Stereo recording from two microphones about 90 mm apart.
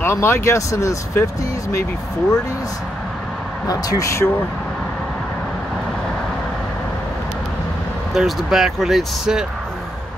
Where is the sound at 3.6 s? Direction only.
45° left (ahead or behind).